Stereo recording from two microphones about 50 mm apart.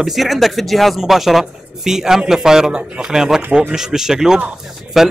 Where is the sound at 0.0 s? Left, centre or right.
Centre.